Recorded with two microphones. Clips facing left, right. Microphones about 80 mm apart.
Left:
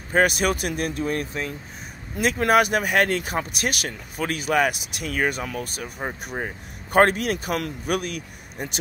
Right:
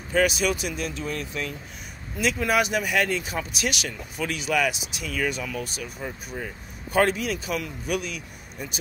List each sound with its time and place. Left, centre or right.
0.1 s speech: left